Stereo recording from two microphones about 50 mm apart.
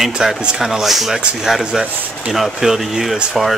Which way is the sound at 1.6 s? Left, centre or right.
Centre.